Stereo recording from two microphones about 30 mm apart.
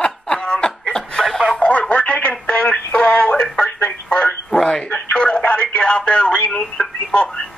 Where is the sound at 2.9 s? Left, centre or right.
Left.